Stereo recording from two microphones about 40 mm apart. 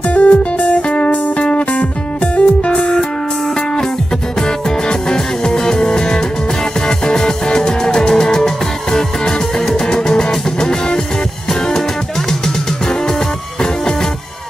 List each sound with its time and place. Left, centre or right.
0.1 s music: left; by 3.1 s centre
4.4 s music: centre